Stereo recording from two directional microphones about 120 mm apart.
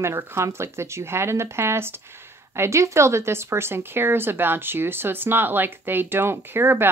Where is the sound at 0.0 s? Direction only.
20° right (ahead or behind).